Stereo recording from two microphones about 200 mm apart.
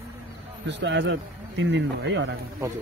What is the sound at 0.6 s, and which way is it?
Speech, 60° right (ahead or behind).